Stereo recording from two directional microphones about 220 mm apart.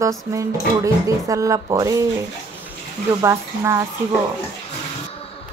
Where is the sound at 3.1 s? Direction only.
10° right (ahead or behind).